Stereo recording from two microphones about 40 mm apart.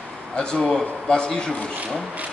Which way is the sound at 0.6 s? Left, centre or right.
Centre.